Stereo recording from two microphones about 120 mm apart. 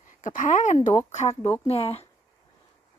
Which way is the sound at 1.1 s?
70° left (ahead or behind).